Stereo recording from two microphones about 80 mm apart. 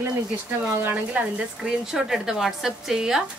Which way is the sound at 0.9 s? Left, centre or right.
Centre.